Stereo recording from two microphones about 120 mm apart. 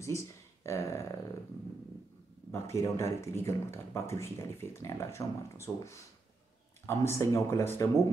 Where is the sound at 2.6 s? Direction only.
25° left (ahead or behind).